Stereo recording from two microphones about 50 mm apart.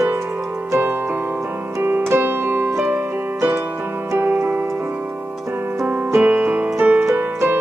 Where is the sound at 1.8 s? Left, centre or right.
Right.